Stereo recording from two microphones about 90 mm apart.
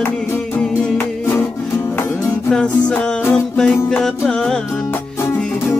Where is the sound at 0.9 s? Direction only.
25° left (ahead or behind).